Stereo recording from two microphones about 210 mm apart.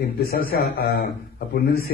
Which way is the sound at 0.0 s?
45° left (ahead or behind).